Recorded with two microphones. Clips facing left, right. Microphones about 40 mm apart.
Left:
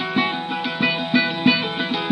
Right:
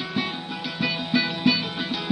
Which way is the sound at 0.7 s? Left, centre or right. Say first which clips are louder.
Left 4 dB; left.